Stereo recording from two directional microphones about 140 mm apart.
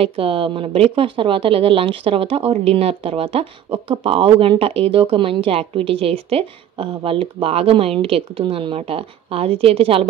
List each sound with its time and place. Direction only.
0.0 s a woman's voice: 40° right (ahead or behind)